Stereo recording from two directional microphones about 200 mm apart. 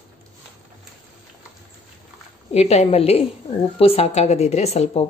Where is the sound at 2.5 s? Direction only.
35° left (ahead or behind).